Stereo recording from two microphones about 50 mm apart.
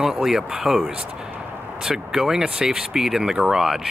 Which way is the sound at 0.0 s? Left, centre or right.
Centre.